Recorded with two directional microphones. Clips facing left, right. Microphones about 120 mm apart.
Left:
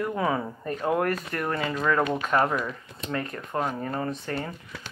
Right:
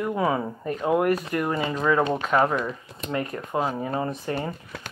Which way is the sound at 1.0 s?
15° right (ahead or behind).